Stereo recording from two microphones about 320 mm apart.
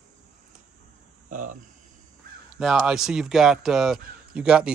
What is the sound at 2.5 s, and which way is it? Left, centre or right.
Speech, centre.